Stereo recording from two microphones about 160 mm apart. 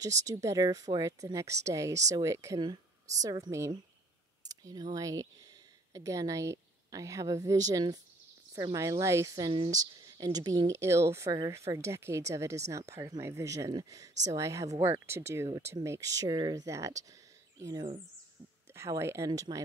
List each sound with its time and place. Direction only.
0.0 s speech: 20° right (ahead or behind)
4.5 s a sound: 25° right (ahead or behind)
4.9 s speech: 20° right (ahead or behind)